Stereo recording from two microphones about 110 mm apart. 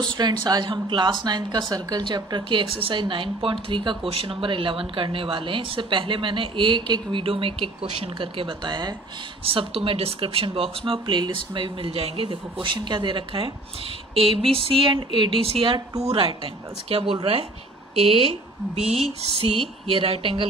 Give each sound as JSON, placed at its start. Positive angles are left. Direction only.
{"t": 0.0, "sound": "speech", "side_deg": -40}
{"t": 9.4, "sound": "speech", "side_deg": -60}
{"t": 18.8, "sound": "a sound", "side_deg": -70}
{"t": 19.4, "sound": "speech", "side_deg": -60}